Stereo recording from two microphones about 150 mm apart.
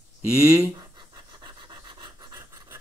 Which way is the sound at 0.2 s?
20° right (ahead or behind).